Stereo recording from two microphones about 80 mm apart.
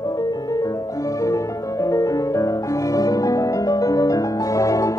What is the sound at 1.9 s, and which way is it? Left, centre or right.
Music, left.